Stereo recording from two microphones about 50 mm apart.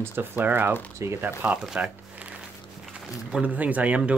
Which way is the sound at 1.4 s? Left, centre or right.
Right.